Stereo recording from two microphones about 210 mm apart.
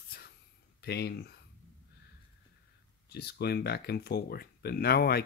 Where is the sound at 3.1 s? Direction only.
50° left (ahead or behind).